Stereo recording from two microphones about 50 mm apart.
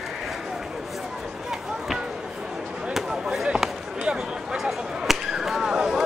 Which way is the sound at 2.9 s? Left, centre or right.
Centre.